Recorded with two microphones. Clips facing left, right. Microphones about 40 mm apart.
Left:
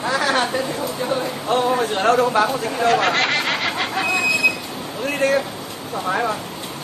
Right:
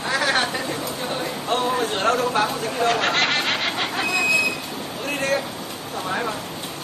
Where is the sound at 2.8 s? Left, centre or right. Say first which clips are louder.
Left 3 dB; left.